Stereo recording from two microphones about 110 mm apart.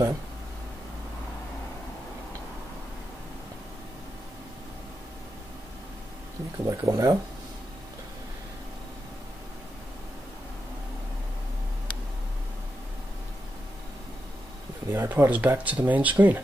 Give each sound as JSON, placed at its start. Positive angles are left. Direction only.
{"t": 6.6, "sound": "speech", "side_deg": -30}
{"t": 14.9, "sound": "speech", "side_deg": -20}